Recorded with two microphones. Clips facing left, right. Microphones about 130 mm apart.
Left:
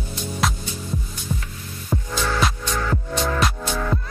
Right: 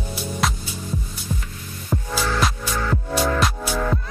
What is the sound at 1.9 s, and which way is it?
Music, 5° right (ahead or behind).